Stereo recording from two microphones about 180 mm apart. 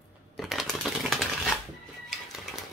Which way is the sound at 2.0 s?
Centre (ahead or behind).